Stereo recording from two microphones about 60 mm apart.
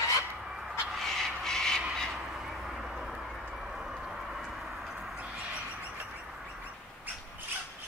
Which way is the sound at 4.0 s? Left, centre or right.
Centre.